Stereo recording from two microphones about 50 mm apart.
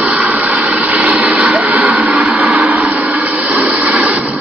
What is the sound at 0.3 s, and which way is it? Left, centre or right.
Vehicle, right.